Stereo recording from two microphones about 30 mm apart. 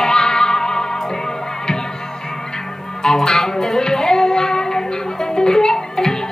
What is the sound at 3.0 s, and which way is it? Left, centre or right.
Music, left.